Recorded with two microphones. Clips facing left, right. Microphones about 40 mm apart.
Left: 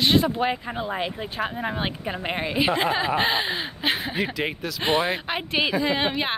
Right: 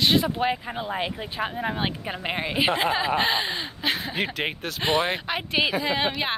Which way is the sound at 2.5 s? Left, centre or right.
Right.